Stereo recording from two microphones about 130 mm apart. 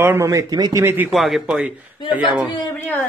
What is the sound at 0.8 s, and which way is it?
Speech, 15° right (ahead or behind).